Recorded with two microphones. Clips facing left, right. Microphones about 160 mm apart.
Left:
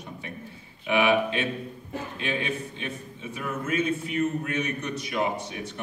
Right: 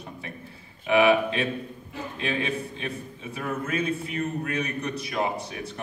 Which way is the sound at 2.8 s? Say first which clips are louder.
Right 1 dB; 35° right (ahead or behind).